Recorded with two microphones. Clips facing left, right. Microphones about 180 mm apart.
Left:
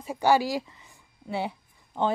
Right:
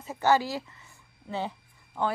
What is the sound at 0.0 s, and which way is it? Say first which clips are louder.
Speech: left 2 dB; 15° left (ahead or behind).